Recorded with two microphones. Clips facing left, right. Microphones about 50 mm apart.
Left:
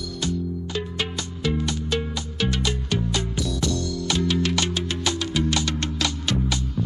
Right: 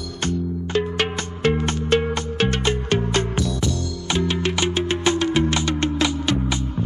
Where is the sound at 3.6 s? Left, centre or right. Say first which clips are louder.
Even; right.